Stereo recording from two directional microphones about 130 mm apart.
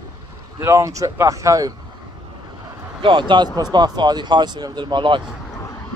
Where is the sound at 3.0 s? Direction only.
40° right (ahead or behind).